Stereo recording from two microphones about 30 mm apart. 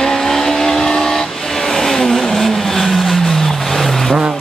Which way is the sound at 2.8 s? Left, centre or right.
Centre.